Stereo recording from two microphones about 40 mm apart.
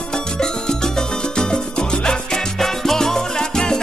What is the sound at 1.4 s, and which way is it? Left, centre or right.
Music, left.